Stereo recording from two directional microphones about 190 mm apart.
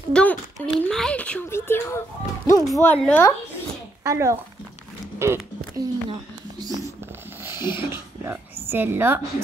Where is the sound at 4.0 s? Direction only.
15° right (ahead or behind).